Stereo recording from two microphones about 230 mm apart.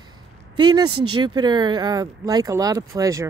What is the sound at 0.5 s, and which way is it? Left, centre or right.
Speech, centre.